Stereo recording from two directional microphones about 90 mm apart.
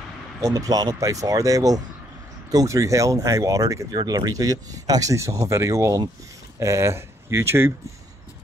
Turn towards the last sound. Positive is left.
turn(degrees=-30)  # may be behind; listen again after turning